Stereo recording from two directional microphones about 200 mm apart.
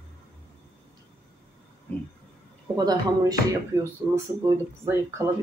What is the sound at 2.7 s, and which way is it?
Speech, 20° right (ahead or behind).